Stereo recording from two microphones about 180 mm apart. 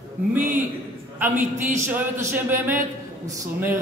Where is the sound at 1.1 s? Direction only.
10° right (ahead or behind).